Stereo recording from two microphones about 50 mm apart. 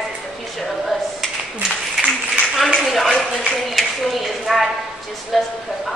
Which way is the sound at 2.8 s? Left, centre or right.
Centre.